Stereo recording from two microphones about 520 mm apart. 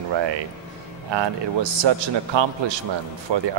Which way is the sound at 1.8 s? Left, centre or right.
Right.